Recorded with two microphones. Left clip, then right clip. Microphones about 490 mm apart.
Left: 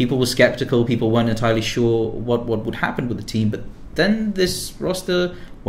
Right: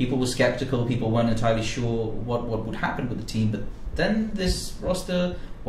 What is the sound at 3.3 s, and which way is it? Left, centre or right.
Speech, left.